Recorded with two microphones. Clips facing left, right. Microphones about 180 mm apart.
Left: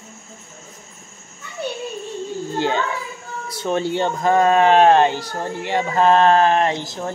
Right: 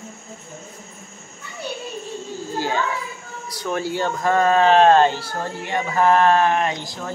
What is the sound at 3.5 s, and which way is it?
Speech, 25° left (ahead or behind).